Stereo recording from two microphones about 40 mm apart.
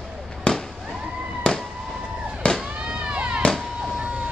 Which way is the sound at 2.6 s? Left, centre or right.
Right.